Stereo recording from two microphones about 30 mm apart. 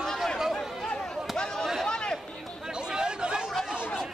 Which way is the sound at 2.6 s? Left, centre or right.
Right.